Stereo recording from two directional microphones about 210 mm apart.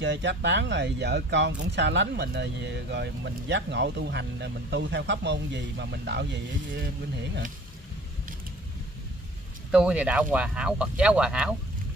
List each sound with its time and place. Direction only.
0.0 s speech: 55° right (ahead or behind)
9.7 s speech: 5° right (ahead or behind)